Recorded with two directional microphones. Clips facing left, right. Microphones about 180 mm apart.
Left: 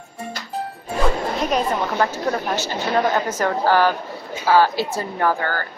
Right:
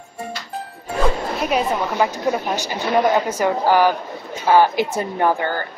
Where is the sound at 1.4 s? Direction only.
5° right (ahead or behind).